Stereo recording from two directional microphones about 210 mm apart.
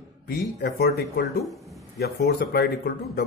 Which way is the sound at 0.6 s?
50° left (ahead or behind).